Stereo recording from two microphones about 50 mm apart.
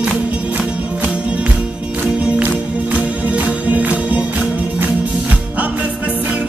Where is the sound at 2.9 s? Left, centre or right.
Right.